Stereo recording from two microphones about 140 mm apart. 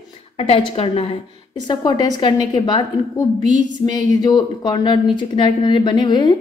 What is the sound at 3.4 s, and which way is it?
Speech, 65° right (ahead or behind).